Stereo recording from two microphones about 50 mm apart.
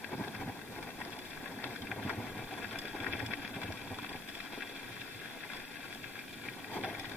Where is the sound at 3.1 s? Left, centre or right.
Centre.